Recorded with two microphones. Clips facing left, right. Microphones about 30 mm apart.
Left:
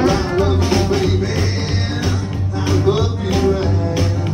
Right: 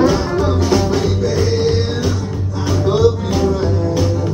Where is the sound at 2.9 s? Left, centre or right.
Left.